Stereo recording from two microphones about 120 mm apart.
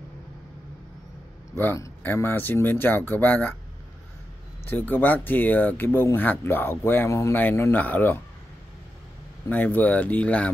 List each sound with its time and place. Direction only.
1.5 s speech: 20° left (ahead or behind)
4.6 s speech: 15° left (ahead or behind)
9.5 s speech: 15° left (ahead or behind)